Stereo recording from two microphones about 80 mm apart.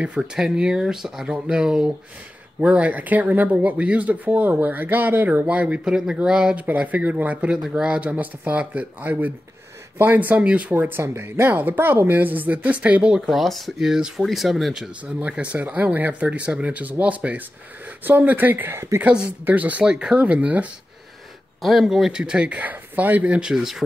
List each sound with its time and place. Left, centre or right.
0.2 s speech: centre
13.3 s speech: centre
15.1 s speech: centre
21.5 s speech: centre
23.5 s speech: centre